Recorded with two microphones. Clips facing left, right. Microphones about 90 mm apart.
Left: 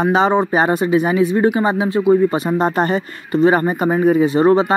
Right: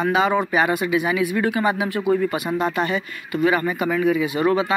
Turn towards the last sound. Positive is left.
turn(degrees=35)  # may be behind; listen again after turning